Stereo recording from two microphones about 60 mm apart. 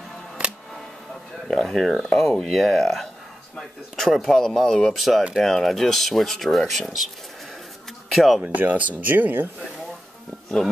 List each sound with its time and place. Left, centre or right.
1.5 s speech: centre
8.1 s speech: centre
8.4 s speech: right